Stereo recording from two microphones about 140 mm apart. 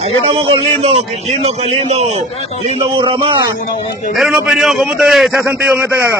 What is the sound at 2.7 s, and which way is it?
Speech, 40° right (ahead or behind).